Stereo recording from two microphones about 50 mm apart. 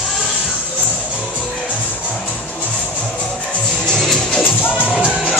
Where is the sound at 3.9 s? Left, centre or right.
Centre.